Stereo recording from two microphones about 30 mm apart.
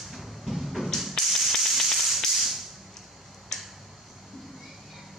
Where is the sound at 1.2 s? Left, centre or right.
Centre.